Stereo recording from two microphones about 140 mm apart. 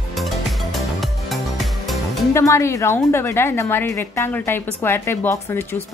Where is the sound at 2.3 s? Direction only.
20° left (ahead or behind).